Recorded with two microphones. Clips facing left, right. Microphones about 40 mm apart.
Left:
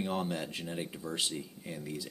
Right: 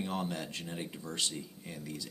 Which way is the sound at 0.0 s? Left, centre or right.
Centre.